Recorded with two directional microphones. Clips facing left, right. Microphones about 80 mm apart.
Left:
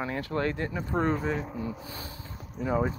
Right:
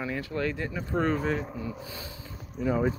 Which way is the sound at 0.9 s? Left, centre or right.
Centre.